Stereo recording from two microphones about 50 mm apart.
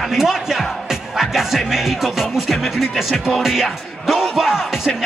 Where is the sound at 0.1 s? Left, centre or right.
Centre.